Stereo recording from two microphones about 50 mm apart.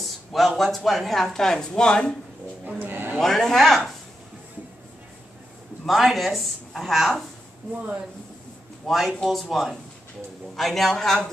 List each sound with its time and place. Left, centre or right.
0.0 s speech: centre
2.6 s a sound: right
3.2 s speech: centre
5.9 s speech: centre
8.8 s speech: centre